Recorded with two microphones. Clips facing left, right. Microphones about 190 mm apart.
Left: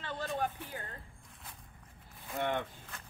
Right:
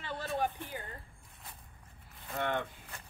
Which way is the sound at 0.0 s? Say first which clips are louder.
Right 1 dB; 10° right (ahead or behind).